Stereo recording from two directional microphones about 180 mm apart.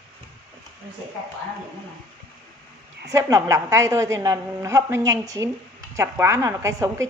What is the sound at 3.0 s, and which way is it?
A woman's voice, 20° right (ahead or behind).